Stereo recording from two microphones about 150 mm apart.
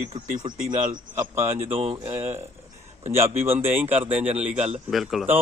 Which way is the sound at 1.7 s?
40° right (ahead or behind).